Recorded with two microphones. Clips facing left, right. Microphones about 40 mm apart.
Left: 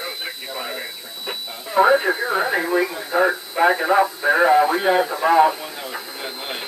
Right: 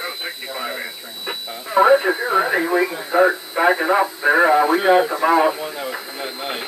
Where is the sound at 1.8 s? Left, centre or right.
Centre.